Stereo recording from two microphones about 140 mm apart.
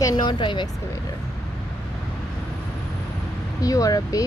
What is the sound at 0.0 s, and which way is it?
Vehicle, 30° left (ahead or behind).